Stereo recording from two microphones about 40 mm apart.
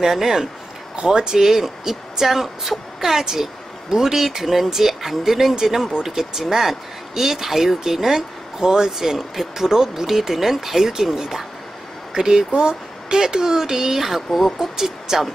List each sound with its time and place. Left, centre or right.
0.0 s speech: centre